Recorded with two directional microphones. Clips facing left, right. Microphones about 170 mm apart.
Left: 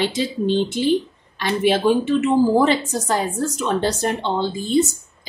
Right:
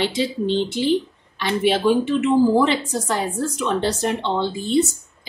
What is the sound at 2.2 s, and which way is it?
A woman's voice, 45° left (ahead or behind).